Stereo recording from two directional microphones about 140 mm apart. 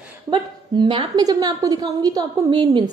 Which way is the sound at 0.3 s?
35° right (ahead or behind).